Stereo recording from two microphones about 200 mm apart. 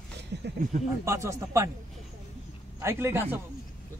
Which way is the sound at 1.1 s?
15° right (ahead or behind).